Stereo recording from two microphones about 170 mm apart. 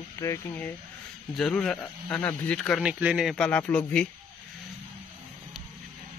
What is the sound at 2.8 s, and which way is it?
Speech, 5° right (ahead or behind).